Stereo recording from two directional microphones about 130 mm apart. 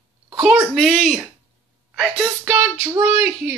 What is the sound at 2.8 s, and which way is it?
Speech, 20° right (ahead or behind).